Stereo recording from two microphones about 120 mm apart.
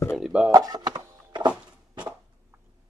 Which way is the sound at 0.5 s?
35° right (ahead or behind).